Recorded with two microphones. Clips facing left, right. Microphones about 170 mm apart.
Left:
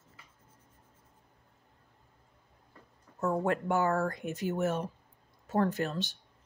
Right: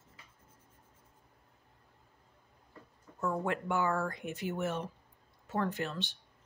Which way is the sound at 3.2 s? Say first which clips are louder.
Left 4 dB; 40° left (ahead or behind).